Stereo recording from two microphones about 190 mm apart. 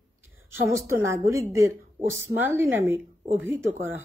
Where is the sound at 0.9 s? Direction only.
15° right (ahead or behind).